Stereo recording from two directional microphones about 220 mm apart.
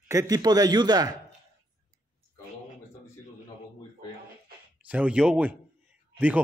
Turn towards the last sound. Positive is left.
turn(degrees=-5)  # may be behind; listen again after turning